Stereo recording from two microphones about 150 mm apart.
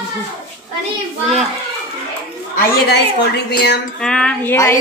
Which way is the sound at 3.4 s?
90° left.